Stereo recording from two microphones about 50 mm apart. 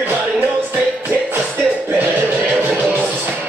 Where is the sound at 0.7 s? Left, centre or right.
Right.